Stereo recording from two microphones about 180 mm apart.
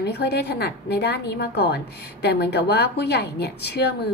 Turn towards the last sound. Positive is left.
turn(degrees=65)  # may be behind; listen again after turning